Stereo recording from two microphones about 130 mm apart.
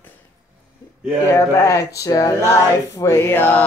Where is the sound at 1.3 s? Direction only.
20° left (ahead or behind).